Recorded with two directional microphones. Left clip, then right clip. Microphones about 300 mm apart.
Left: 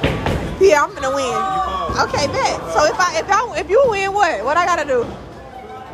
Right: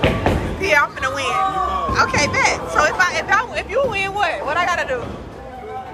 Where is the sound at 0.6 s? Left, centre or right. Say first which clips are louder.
Left 4 dB; left.